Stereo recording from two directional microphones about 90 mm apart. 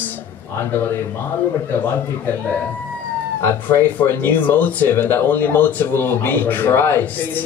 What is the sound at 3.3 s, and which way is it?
Speech, 25° left (ahead or behind).